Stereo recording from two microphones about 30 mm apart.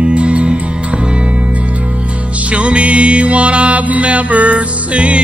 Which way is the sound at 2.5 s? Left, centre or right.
Right.